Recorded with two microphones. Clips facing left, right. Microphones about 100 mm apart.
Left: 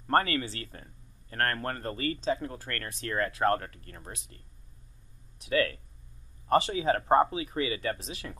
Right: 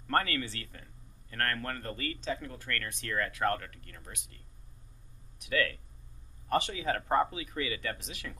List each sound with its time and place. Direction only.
0.0 s a man's voice: 30° left (ahead or behind)
5.4 s a man's voice: 30° left (ahead or behind)